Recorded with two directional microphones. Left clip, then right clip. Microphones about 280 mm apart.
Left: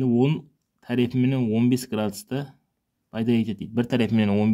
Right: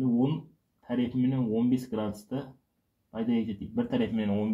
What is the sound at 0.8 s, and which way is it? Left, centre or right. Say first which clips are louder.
Speech: left 6 dB; left.